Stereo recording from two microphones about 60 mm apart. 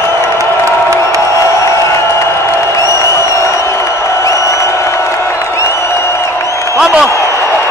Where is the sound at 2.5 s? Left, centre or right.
Left.